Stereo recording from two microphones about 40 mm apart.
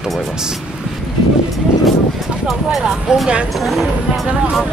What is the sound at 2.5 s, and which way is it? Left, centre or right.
Speech, centre.